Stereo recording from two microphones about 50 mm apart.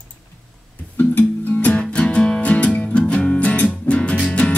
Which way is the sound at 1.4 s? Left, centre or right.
Left.